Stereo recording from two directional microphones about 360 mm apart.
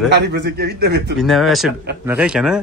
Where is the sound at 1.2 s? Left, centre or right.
Centre.